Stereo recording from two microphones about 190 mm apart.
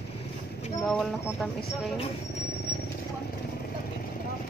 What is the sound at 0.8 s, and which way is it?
Speech, centre (ahead or behind).